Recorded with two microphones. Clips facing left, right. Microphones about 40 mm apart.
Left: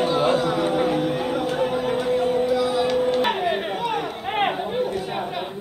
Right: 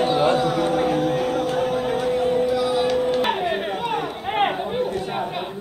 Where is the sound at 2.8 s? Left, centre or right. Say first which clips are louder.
Even; centre.